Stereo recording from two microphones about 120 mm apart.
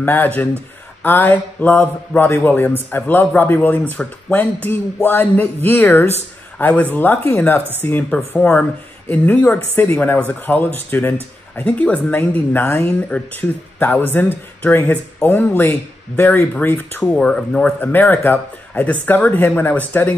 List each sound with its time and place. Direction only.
0.0 s speech: 15° left (ahead or behind)